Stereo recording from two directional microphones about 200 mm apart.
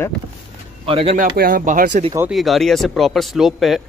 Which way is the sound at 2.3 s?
Centre (ahead or behind).